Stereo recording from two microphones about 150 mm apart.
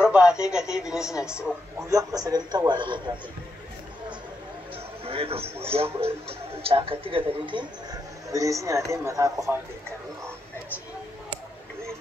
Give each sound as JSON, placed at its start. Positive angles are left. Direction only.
{"t": 0.0, "sound": "a man's voice", "side_deg": -5}
{"t": 1.9, "sound": "speech", "side_deg": -25}
{"t": 5.0, "sound": "speech", "side_deg": -40}
{"t": 8.3, "sound": "speech", "side_deg": -20}